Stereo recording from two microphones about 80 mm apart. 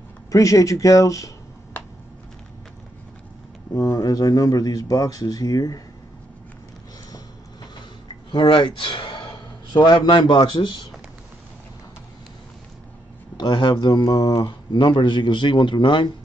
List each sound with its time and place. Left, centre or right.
0.3 s speech: left
3.7 s speech: left
8.3 s a man's voice: left
13.4 s speech: left